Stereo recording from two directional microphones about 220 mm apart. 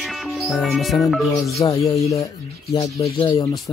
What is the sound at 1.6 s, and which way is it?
Speech, 15° left (ahead or behind).